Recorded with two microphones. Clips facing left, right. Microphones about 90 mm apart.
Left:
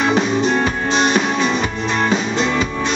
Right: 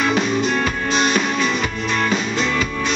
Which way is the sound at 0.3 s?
30° left (ahead or behind).